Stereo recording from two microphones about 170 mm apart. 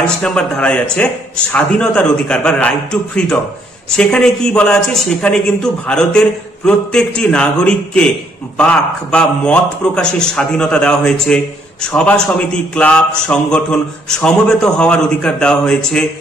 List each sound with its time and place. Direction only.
0.0 s a man's voice: 5° left (ahead or behind)